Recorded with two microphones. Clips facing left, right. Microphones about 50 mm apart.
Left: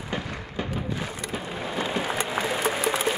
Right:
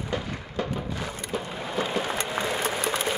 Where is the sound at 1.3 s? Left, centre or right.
Centre.